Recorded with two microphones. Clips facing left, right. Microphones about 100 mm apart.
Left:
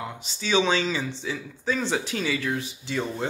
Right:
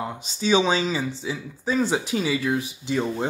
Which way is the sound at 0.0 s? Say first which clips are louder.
Right 6 dB; 25° right (ahead or behind).